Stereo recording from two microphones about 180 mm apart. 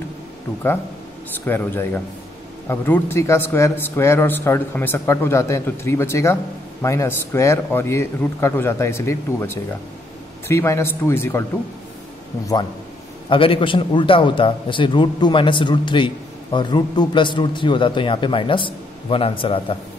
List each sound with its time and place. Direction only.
1.4 s a man's voice: 10° left (ahead or behind)
13.3 s a man's voice: 30° left (ahead or behind)